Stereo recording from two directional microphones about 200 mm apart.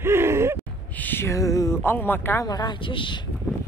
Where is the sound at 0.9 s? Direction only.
10° left (ahead or behind); by 3.2 s 25° left (ahead or behind).